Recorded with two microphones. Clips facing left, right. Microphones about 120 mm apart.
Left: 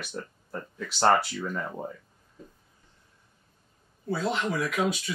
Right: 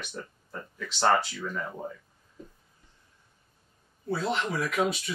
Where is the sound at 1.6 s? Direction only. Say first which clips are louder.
Left 1 dB; 15° left (ahead or behind).